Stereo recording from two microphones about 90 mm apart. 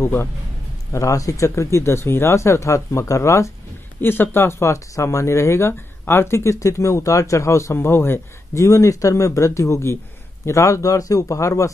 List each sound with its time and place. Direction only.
0.0 s speech: 30° left (ahead or behind)